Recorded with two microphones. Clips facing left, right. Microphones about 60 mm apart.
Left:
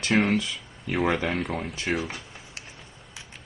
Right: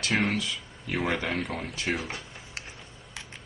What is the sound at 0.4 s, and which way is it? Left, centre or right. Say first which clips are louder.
Speech: left 1 dB; centre.